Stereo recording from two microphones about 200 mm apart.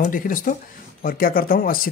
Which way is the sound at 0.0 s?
45° left (ahead or behind).